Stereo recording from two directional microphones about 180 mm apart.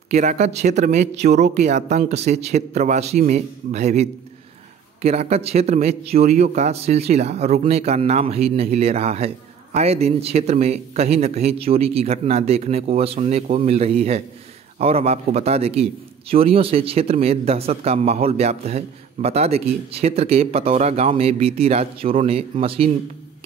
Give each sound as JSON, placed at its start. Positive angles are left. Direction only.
{"t": 0.1, "sound": "a man's voice", "side_deg": -40}